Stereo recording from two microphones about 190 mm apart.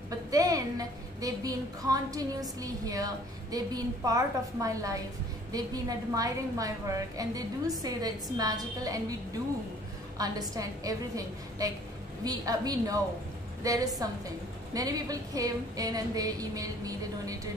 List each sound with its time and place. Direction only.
0.3 s a woman's voice: 20° right (ahead or behind)
10.1 s a woman's voice: 20° right (ahead or behind)